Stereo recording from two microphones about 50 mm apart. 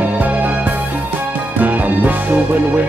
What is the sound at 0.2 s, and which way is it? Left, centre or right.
Music, right.